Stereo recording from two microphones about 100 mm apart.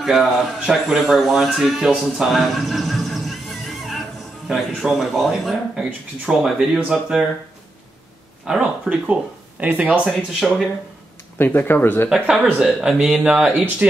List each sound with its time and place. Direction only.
0.0 s speech: 5° right (ahead or behind)
8.5 s speech: 10° right (ahead or behind)
10.4 s speech: centre (ahead or behind)
11.3 s speech: 20° left (ahead or behind)
12.4 s speech: 10° right (ahead or behind)